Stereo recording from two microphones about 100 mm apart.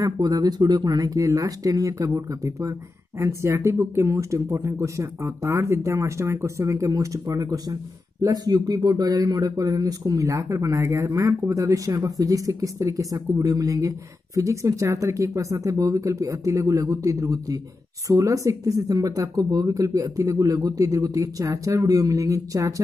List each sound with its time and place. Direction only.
0.0 s a man's voice: 40° right (ahead or behind)